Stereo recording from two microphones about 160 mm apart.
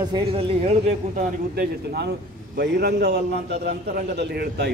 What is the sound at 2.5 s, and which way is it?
A man's voice, 90° right.